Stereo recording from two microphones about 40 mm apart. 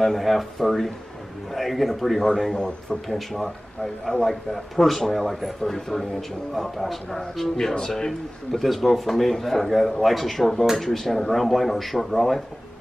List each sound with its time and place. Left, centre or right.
0.0 s a man's voice: centre
2.2 s a man's voice: centre
3.1 s a man's voice: centre